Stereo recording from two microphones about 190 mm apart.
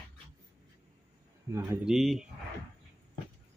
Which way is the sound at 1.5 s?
15° right (ahead or behind).